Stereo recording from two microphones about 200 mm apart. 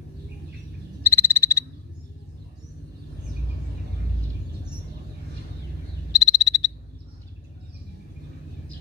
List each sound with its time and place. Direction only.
1.0 s frog: 15° left (ahead or behind)
6.1 s frog: 20° left (ahead or behind)